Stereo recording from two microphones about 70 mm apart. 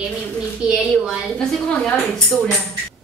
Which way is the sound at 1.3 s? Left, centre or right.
Centre.